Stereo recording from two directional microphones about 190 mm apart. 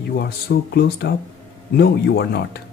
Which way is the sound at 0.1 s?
55° left (ahead or behind).